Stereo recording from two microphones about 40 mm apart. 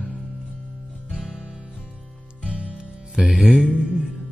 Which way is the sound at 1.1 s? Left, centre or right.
Centre.